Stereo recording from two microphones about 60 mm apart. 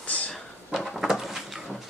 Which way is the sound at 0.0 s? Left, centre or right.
Left.